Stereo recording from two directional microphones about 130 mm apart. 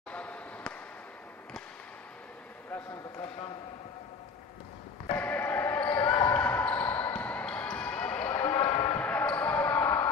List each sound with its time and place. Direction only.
0.1 s basketball bounce: 10° left (ahead or behind)
2.7 s a sound: 20° left (ahead or behind)
5.1 s basketball bounce: 10° left (ahead or behind)
8.3 s basketball bounce: 35° left (ahead or behind)
9.0 s basketball bounce: 10° left (ahead or behind)